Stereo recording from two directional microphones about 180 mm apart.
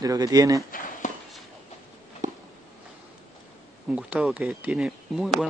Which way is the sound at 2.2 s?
45° right (ahead or behind).